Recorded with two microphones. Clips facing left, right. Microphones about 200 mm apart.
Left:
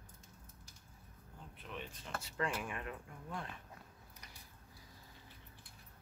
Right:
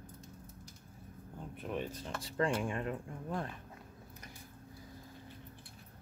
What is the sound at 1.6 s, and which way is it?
Speech, 45° right (ahead or behind).